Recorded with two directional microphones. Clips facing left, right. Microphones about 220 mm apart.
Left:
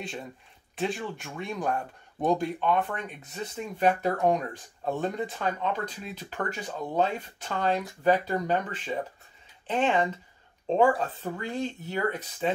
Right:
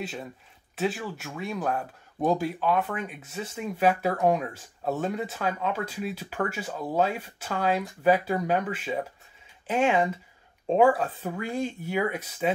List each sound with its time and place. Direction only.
0.7 s speech: 5° right (ahead or behind)